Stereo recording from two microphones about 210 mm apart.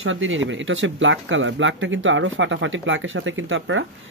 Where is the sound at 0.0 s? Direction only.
65° right (ahead or behind).